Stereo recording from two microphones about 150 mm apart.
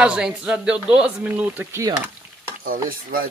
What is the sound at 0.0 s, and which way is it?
Speech, 5° right (ahead or behind).